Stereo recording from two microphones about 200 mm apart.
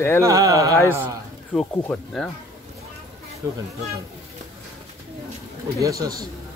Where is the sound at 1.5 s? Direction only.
5° left (ahead or behind).